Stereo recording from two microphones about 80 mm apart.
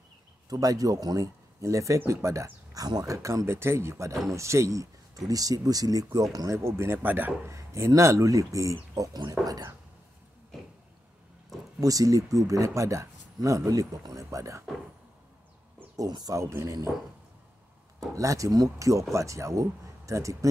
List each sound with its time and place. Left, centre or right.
0.5 s speech: right
5.2 s speech: right
6.5 s speech: right
7.5 s speech: right
11.8 s speech: right
16.1 s speech: right
16.3 s speech: right
18.0 s speech: right